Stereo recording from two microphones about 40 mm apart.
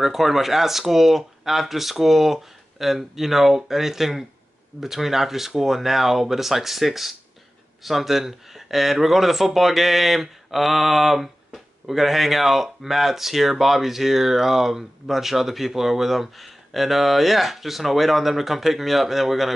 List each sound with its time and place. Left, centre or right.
0.0 s speech: centre